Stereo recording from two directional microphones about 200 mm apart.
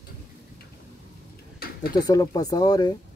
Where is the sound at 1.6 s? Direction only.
50° left (ahead or behind).